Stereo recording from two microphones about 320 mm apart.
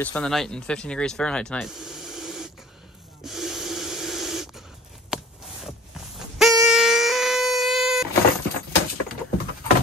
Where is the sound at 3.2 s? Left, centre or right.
Centre.